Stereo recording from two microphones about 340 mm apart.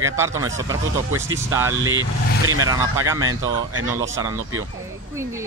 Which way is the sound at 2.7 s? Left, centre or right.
Centre.